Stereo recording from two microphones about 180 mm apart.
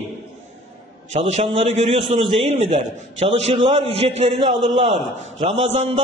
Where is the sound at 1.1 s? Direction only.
35° right (ahead or behind).